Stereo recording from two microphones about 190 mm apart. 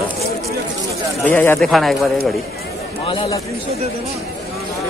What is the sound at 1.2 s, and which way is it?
Speech, 10° left (ahead or behind).